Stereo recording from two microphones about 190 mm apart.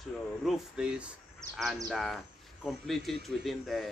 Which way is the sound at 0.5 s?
5° right (ahead or behind).